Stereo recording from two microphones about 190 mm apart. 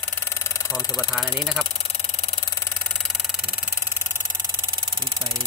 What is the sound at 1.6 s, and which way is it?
Engine, 30° left (ahead or behind).